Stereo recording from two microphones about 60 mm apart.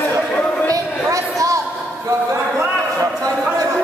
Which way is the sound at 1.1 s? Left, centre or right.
Right.